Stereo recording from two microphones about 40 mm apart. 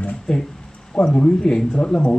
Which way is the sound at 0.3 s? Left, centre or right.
Centre.